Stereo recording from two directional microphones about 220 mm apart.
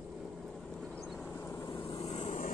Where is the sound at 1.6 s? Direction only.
25° left (ahead or behind).